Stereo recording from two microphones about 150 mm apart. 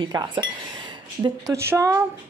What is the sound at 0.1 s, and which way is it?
A woman's voice, 25° right (ahead or behind).